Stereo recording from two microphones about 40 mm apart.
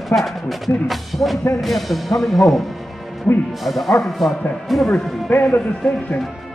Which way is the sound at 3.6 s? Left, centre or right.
Centre.